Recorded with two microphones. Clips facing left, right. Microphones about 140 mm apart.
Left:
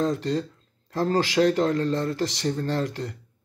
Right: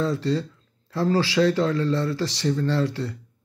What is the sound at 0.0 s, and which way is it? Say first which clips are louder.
Speech: right 1 dB; 45° left (ahead or behind).